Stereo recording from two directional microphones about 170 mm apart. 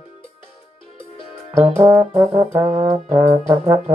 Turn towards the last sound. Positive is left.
turn(degrees=-15)  # may be behind; listen again after turning